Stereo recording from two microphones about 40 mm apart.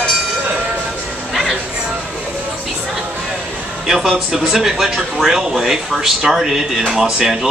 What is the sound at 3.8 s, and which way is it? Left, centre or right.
Speech, centre.